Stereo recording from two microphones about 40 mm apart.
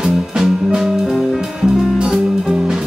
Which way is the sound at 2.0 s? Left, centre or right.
Centre.